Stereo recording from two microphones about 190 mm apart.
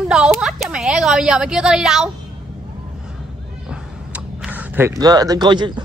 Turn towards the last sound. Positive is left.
turn(degrees=-25)  # may be behind; listen again after turning